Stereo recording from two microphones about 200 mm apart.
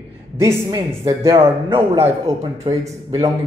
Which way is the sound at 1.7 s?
30° right (ahead or behind).